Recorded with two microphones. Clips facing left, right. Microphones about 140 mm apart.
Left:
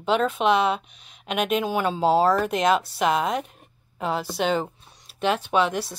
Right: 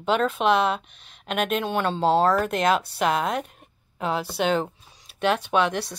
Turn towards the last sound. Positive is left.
turn(degrees=5)  # may be behind; listen again after turning